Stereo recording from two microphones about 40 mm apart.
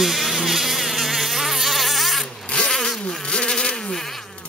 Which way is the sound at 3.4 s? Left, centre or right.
Centre.